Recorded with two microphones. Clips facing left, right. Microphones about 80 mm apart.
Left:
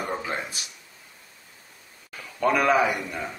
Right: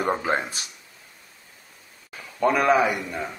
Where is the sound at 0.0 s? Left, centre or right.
Right.